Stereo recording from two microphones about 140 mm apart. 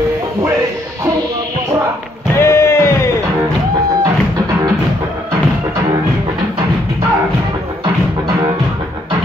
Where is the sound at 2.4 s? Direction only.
20° left (ahead or behind).